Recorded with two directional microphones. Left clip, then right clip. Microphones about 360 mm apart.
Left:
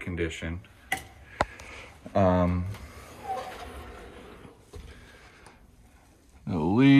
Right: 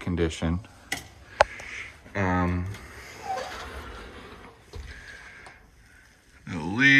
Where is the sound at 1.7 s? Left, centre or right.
Centre.